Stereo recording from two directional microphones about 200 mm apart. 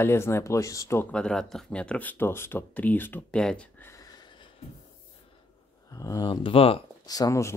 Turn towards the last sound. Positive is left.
turn(degrees=15)  # may be behind; listen again after turning